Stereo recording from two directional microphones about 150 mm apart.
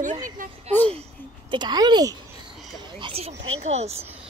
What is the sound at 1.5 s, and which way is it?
A woman's voice, 30° right (ahead or behind).